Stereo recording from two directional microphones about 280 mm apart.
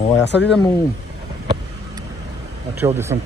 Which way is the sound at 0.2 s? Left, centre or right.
Left.